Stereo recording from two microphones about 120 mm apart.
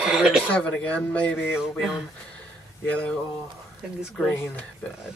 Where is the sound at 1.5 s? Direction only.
5° right (ahead or behind).